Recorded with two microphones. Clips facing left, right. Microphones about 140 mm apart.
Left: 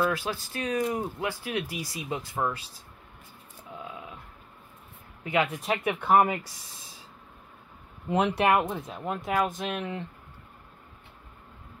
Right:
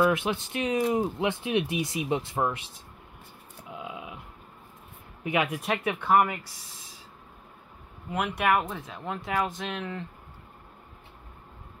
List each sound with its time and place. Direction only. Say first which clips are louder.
0.0 s speech: right 4 dB; 20° right (ahead or behind)
3.7 s a sound: right 2 dB; 15° right (ahead or behind)
5.2 s speech: even; 15° right (ahead or behind)
5.7 s speech: even; 15° left (ahead or behind)
8.1 s speech: left 3 dB; 25° left (ahead or behind)
8.9 s speech: left 1 dB; 5° left (ahead or behind)